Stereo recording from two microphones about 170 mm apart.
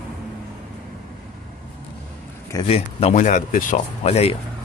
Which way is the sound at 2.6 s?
35° left (ahead or behind).